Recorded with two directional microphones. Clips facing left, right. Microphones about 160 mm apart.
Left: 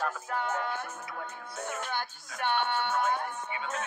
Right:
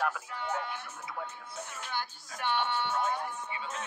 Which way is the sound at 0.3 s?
45° left (ahead or behind).